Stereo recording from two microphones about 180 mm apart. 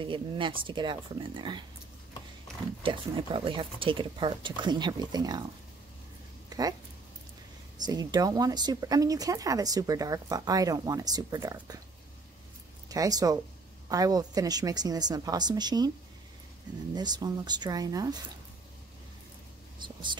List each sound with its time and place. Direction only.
0.0 s speech: 25° right (ahead or behind)
2.8 s speech: 30° right (ahead or behind)
7.7 s speech: 20° right (ahead or behind)
12.8 s speech: 20° right (ahead or behind)
16.9 s speech: 25° right (ahead or behind)
19.8 s vehicle: 25° right (ahead or behind)